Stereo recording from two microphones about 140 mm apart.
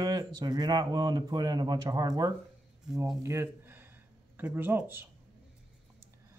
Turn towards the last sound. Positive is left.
turn(degrees=-15)  # may be behind; listen again after turning